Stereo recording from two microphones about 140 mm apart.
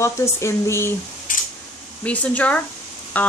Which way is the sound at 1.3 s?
70° left (ahead or behind).